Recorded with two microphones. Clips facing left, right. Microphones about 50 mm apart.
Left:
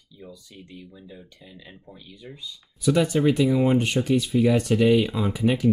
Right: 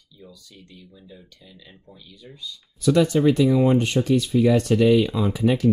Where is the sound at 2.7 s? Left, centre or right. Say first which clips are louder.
Right 3 dB; centre.